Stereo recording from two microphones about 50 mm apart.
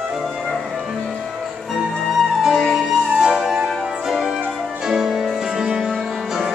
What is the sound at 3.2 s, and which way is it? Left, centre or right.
Music, centre.